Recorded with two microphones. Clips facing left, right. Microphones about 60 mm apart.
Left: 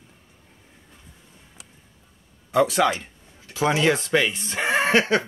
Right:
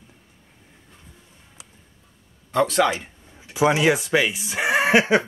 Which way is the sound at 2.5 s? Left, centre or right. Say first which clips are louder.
Even; centre.